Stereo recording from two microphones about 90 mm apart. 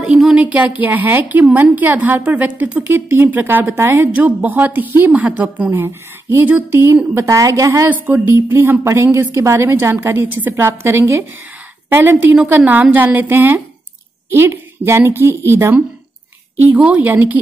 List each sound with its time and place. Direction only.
0.0 s speech: 10° right (ahead or behind)
5.7 s speech: 30° right (ahead or behind)
7.2 s a woman's voice: 35° right (ahead or behind)
16.6 s speech: 15° right (ahead or behind)